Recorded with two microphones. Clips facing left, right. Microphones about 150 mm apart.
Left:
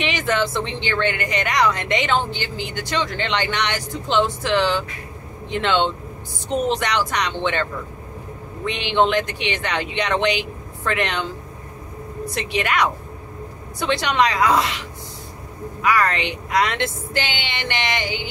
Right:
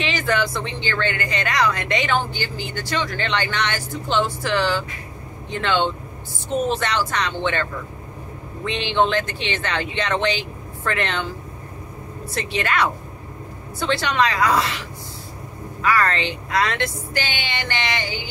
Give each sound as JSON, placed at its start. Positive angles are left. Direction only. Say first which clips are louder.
{"t": 0.0, "sound": "a woman's voice", "louder": "left 1 dB", "side_deg": 20}
{"t": 8.6, "sound": "speech", "louder": "left 1 dB", "side_deg": 15}
{"t": 12.3, "sound": "a woman's voice", "louder": "left 1 dB", "side_deg": 15}
{"t": 15.8, "sound": "a woman's voice", "louder": "left 1 dB", "side_deg": 15}